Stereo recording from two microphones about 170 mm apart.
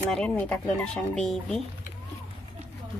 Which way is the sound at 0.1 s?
5° left (ahead or behind).